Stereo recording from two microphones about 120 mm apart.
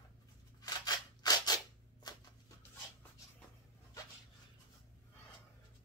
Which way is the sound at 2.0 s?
35° left (ahead or behind).